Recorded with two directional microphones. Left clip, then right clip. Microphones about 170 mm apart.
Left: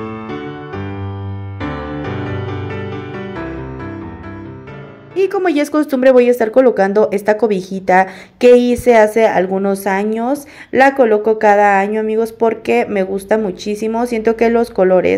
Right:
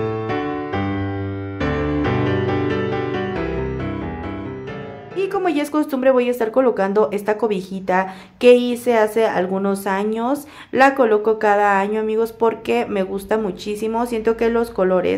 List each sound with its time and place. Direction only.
5.1 s a woman's voice: 25° left (ahead or behind)